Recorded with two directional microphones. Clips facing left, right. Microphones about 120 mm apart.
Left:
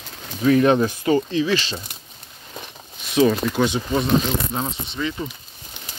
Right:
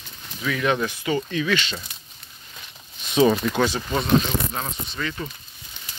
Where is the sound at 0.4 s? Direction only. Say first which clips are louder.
Left 8 dB; 35° left (ahead or behind).